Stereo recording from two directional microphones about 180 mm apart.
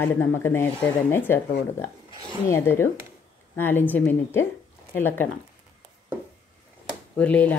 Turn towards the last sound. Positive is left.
turn(degrees=10)  # may be behind; listen again after turning